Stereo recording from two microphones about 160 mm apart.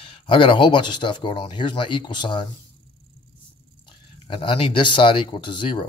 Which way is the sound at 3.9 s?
30° left (ahead or behind).